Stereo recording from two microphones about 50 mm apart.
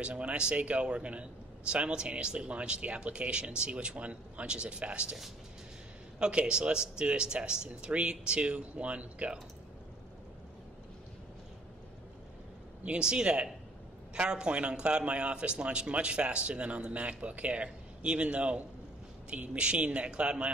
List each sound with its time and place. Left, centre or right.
0.0 s a man's voice: right
6.1 s a man's voice: centre
12.8 s a man's voice: right